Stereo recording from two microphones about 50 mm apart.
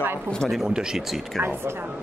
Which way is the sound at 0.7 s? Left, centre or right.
Centre.